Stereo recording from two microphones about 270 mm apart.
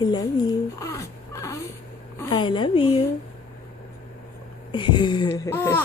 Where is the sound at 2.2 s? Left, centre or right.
Centre.